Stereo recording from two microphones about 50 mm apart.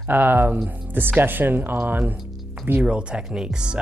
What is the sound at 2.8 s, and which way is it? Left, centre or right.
Speech, right.